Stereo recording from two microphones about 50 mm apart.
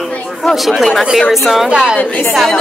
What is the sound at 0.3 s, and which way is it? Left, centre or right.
A woman's voice, centre.